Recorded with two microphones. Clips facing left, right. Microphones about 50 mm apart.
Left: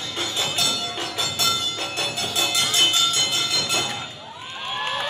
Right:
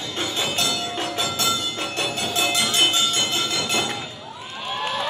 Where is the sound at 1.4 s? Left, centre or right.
Centre.